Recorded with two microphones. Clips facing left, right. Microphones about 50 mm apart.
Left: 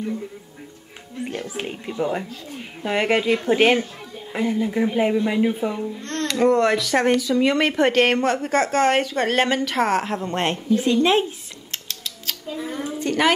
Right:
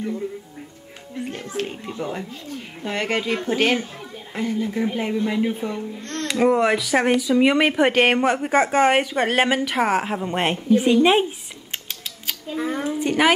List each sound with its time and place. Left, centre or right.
1.6 s speech: centre
6.2 s speech: centre
10.7 s a sound: centre
12.5 s speech: right
13.0 s speech: centre